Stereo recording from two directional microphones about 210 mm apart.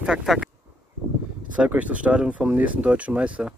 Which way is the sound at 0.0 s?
5° right (ahead or behind).